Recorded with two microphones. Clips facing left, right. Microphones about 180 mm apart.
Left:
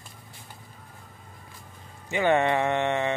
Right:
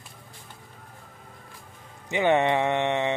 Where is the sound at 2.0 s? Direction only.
20° right (ahead or behind).